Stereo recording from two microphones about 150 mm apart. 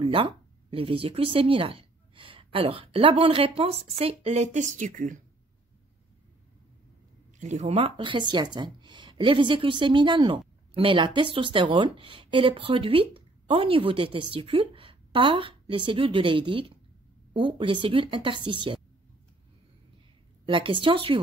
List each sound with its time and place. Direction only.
0.0 s speech: 35° right (ahead or behind); by 5.2 s 60° right (ahead or behind)
7.3 s speech: 50° right (ahead or behind); by 18.8 s 30° right (ahead or behind)
20.4 s speech: 35° right (ahead or behind)